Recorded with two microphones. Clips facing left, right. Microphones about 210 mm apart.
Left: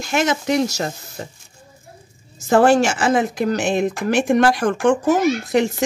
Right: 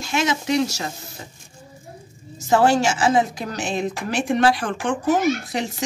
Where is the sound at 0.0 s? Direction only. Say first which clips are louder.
Left 3 dB; 50° left (ahead or behind).